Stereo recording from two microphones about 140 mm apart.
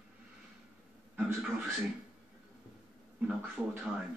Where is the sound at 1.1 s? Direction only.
10° right (ahead or behind).